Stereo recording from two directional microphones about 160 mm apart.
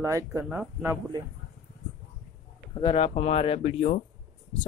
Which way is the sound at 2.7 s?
30° left (ahead or behind).